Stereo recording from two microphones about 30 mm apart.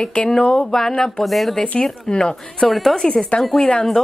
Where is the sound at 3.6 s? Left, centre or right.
Left.